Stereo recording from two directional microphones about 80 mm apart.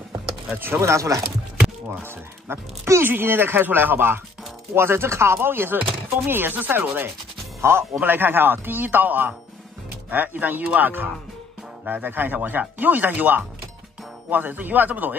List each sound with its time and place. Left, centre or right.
0.7 s speech: right
2.0 s speech: right